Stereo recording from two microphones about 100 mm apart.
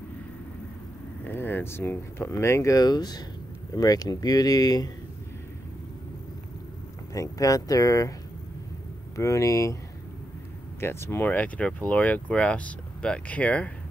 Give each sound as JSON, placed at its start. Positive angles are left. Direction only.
{"t": 1.2, "sound": "speech", "side_deg": 20}
{"t": 7.2, "sound": "speech", "side_deg": 35}
{"t": 9.1, "sound": "speech", "side_deg": 30}
{"t": 10.8, "sound": "speech", "side_deg": 25}